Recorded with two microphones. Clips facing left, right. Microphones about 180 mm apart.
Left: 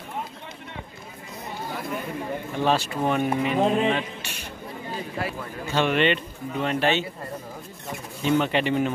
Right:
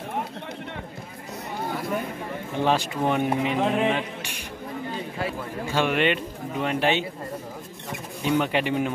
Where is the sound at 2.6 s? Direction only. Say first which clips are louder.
Even; 15° right (ahead or behind).